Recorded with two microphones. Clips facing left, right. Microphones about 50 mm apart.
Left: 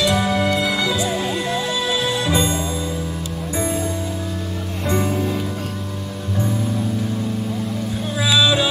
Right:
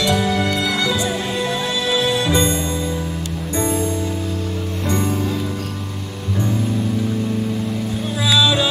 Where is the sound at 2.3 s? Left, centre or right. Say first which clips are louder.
Right 2 dB; centre.